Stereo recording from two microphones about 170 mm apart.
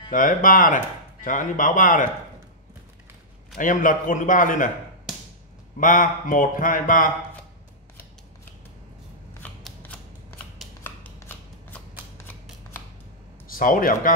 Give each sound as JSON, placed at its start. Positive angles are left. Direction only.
{"t": 0.1, "sound": "speech", "side_deg": 50}
{"t": 3.5, "sound": "speech", "side_deg": 50}
{"t": 5.8, "sound": "speech", "side_deg": 50}
{"t": 9.6, "sound": "scissors", "side_deg": 0}
{"t": 10.8, "sound": "shuffling cards", "side_deg": 15}
{"t": 12.2, "sound": "a sound", "side_deg": 15}
{"t": 13.5, "sound": "speech", "side_deg": 55}